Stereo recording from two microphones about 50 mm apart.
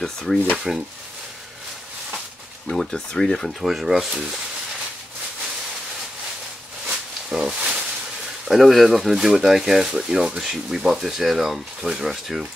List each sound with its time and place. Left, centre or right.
0.0 s speech: centre
0.7 s speech: centre
2.9 s speech: centre
3.6 s speech: centre
6.9 s a sound: centre
8.5 s speech: centre
10.4 s speech: centre